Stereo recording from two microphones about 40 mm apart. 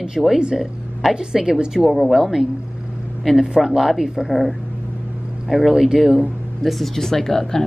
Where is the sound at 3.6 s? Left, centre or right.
Centre.